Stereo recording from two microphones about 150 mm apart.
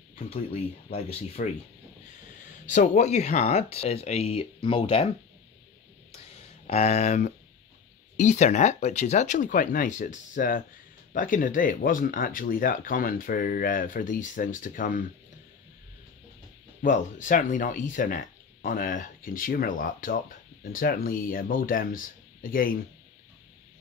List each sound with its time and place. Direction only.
0.3 s speech: 40° left (ahead or behind)
2.9 s speech: 50° left (ahead or behind)
6.7 s speech: 45° left (ahead or behind); by 15.0 s 65° left (ahead or behind)
16.8 s speech: 60° left (ahead or behind)